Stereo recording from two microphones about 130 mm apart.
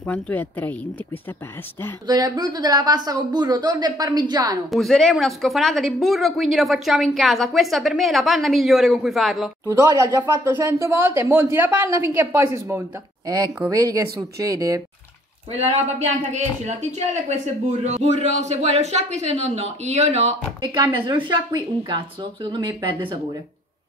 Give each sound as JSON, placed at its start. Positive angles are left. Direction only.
{"t": 0.0, "sound": "a woman's voice", "side_deg": 15}
{"t": 2.0, "sound": "speech", "side_deg": -30}
{"t": 4.6, "sound": "a woman's voice", "side_deg": 0}
{"t": 10.0, "sound": "speech", "side_deg": -20}
{"t": 13.6, "sound": "speech", "side_deg": -30}
{"t": 15.5, "sound": "speech", "side_deg": -55}
{"t": 16.2, "sound": "speech", "side_deg": -65}
{"t": 20.6, "sound": "speech", "side_deg": -35}